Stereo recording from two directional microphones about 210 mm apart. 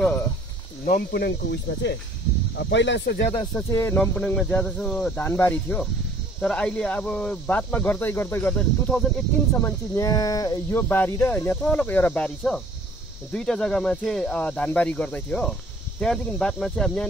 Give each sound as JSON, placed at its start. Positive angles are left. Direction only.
{"t": 0.8, "sound": "speech", "side_deg": 50}
{"t": 3.5, "sound": "speech", "side_deg": 15}